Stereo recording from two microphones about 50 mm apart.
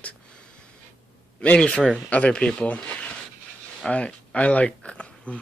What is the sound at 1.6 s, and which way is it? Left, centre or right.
Speech, left.